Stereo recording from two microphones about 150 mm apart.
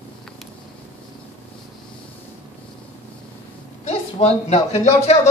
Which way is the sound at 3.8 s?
45° left (ahead or behind).